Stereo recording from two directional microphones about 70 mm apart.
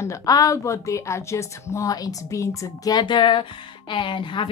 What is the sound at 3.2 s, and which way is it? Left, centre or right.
Speech, left.